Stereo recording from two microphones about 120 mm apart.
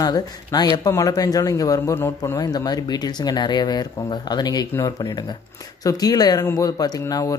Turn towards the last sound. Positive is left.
turn(degrees=30)  # may be behind; listen again after turning